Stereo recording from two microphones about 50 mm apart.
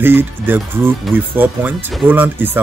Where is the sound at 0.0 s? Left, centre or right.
Right.